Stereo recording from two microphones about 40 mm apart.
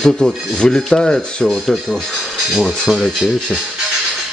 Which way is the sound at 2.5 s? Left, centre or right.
Centre.